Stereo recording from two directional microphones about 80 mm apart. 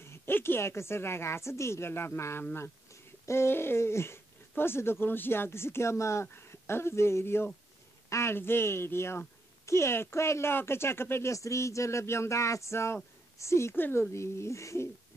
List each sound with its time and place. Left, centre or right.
0.0 s speech: left